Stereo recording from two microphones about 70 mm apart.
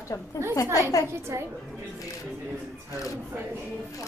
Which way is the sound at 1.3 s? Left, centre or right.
Right.